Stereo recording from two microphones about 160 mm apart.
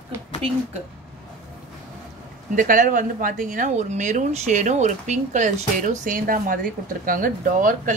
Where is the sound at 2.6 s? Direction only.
60° right (ahead or behind).